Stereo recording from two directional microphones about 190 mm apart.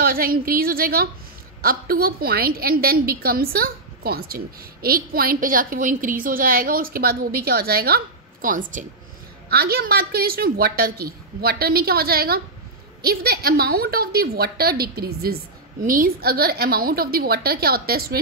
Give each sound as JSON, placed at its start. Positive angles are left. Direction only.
{"t": 0.0, "sound": "a woman's voice", "side_deg": -50}